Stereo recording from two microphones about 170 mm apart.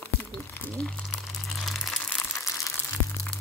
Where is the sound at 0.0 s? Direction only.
10° left (ahead or behind).